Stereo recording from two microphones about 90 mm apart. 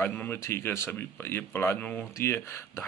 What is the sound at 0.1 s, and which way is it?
Speech, 20° left (ahead or behind).